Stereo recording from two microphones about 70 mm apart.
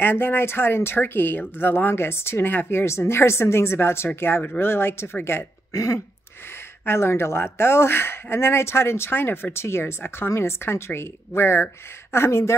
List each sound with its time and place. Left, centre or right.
0.0 s speech: left